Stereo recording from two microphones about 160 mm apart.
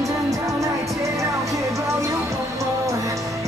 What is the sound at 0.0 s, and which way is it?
Music, 20° right (ahead or behind).